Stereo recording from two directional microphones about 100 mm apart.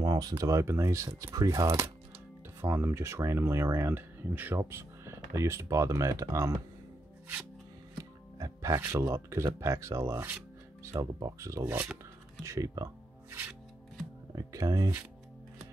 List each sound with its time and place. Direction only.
0.0 s speech: 40° right (ahead or behind)
2.6 s speech: 25° right (ahead or behind)
8.0 s speech: 35° right (ahead or behind)
11.7 s speech: 15° right (ahead or behind)
12.4 s speech: 35° right (ahead or behind)